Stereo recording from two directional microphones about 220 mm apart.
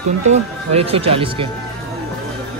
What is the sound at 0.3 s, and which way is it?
Speech, 25° right (ahead or behind).